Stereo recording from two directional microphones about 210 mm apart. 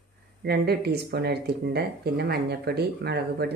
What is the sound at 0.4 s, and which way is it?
Speech, 50° right (ahead or behind).